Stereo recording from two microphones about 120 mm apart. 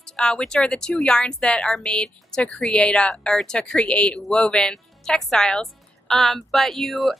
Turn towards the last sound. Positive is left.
turn(degrees=0)  # may be behind; listen again after turning